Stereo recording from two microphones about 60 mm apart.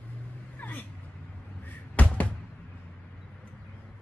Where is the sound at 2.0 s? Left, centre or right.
Left.